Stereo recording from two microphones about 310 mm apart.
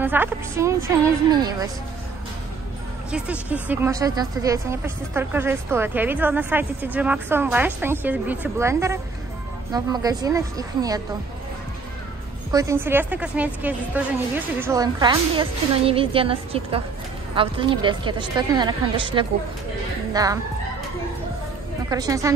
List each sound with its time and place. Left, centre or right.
0.0 s speech: centre
3.1 s speech: centre
12.4 s speech: centre
21.8 s speech: centre